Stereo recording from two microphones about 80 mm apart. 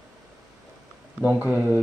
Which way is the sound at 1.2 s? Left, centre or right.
Centre.